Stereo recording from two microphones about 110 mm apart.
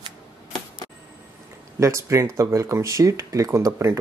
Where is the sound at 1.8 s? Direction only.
25° right (ahead or behind).